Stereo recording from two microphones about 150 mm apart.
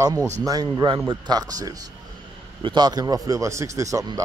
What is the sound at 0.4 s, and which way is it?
Speech, 25° right (ahead or behind).